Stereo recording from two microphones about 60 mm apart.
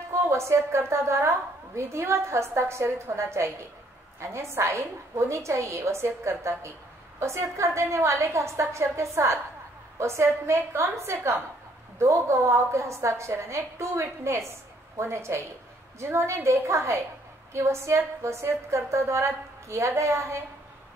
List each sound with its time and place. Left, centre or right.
0.1 s a woman's voice: right